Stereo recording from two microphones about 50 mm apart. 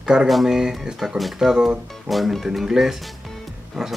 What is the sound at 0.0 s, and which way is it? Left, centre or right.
Speech, centre.